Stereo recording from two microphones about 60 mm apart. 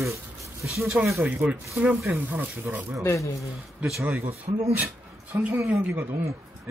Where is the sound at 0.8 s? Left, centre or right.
Right.